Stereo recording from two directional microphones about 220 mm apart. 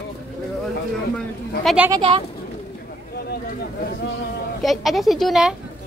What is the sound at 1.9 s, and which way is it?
Speech, 25° right (ahead or behind).